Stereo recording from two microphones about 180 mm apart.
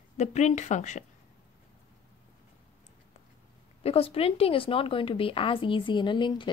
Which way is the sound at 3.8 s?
35° left (ahead or behind).